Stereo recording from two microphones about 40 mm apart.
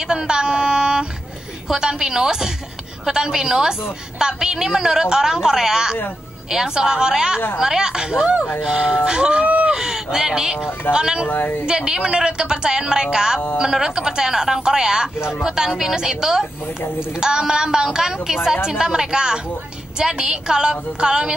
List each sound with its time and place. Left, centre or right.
0.0 s a woman's voice: centre
9.4 s a sound: right
9.8 s fowl: centre
10.1 s a woman's voice: centre
11.2 s speech: left
11.6 s a woman's voice: centre